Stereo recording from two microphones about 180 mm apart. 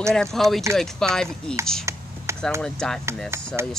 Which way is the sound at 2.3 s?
15° right (ahead or behind).